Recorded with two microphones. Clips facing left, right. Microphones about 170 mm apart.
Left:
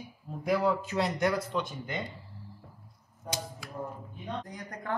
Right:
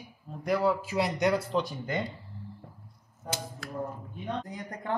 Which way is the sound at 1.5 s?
35° right (ahead or behind).